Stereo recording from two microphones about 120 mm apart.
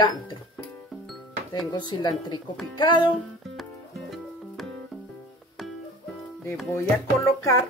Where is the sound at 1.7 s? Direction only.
35° left (ahead or behind).